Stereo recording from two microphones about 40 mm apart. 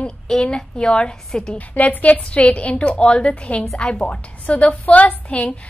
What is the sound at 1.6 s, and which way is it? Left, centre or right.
A woman's voice, left.